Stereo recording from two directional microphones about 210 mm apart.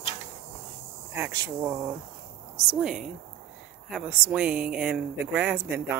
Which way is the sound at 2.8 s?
Centre (ahead or behind).